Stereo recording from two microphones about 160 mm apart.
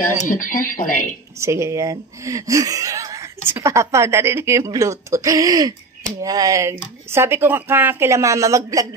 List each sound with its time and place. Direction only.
0.2 s speech: 55° left (ahead or behind)
1.4 s a woman's voice: 15° right (ahead or behind)